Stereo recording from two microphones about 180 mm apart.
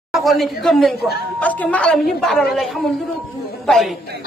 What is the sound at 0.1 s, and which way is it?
A man's voice, centre (ahead or behind).